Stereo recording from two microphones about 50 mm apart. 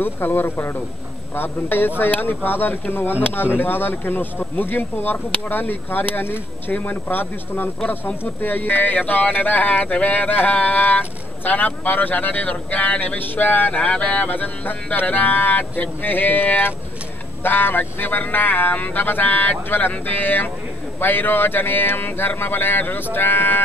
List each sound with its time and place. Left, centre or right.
0.0 s speech: left
13.2 s speech: left
14.3 s speech: left